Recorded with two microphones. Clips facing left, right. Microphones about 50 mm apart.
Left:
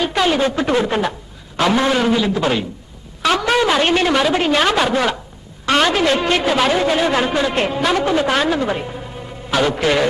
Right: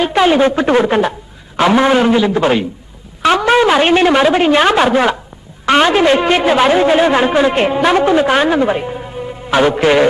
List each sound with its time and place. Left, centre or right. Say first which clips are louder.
0.0 s a man's voice: right 6 dB; right